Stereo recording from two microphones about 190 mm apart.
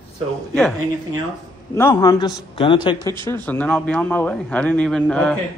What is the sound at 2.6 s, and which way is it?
Speech, 25° left (ahead or behind).